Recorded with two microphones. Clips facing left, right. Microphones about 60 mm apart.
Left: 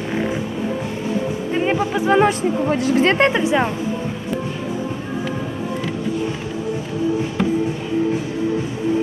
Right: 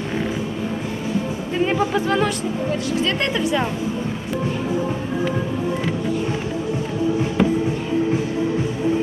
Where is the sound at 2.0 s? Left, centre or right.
Left.